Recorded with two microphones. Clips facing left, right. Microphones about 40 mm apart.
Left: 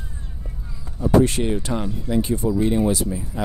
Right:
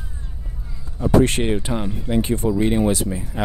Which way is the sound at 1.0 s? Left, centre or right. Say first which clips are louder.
Right 1 dB; right.